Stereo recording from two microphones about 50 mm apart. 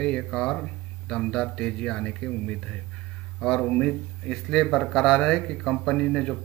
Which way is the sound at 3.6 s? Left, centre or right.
Left.